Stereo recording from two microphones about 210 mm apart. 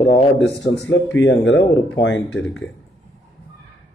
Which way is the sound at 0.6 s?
55° left (ahead or behind).